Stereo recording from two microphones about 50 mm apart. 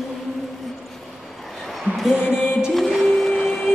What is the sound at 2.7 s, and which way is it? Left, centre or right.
Music, centre.